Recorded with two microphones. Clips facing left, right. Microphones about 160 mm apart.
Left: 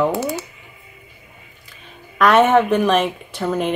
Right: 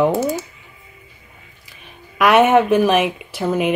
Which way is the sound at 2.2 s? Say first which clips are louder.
Right 1 dB; 10° right (ahead or behind).